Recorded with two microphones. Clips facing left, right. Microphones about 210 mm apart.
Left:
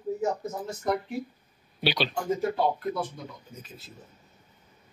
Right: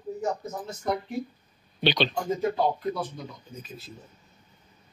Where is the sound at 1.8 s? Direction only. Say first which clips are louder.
Right 3 dB; 5° left (ahead or behind).